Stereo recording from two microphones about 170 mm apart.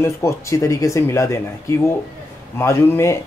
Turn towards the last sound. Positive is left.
turn(degrees=15)  # may be behind; listen again after turning